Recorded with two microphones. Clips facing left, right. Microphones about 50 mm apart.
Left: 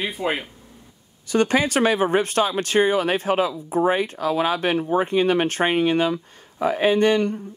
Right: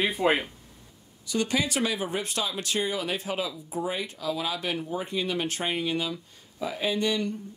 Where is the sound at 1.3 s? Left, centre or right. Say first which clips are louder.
Left 8 dB; left.